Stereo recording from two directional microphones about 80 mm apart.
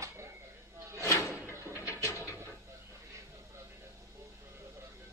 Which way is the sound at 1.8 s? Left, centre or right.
Left.